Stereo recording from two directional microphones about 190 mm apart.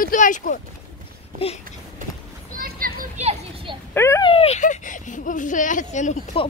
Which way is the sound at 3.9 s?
15° left (ahead or behind).